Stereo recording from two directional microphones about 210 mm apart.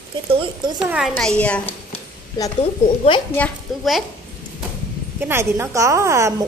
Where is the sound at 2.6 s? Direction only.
25° left (ahead or behind).